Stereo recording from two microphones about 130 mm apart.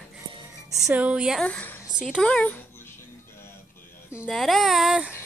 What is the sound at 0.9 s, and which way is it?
Speech, 10° right (ahead or behind).